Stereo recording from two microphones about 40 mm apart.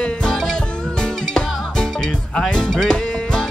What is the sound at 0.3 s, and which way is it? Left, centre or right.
Music, centre.